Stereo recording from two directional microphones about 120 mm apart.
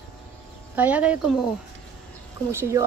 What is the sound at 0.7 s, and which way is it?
Speech, 15° right (ahead or behind).